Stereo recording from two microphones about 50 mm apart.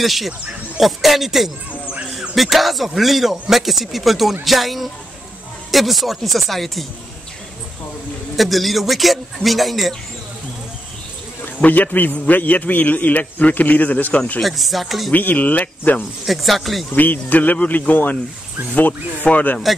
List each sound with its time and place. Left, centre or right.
0.0 s speech: centre
8.4 s speech: centre
11.4 s a man's voice: left
14.4 s speech: centre
15.0 s a man's voice: left
16.3 s speech: centre
16.9 s a man's voice: left